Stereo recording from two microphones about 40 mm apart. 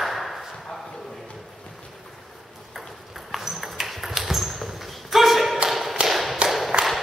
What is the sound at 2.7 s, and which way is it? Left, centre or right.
Ping, centre.